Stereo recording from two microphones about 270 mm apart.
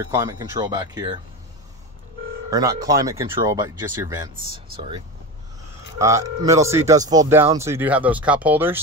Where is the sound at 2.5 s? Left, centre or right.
Centre.